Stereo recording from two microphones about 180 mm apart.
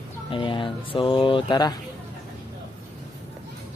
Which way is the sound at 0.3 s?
25° left (ahead or behind).